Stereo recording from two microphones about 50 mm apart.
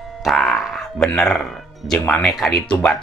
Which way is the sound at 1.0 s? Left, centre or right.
Centre.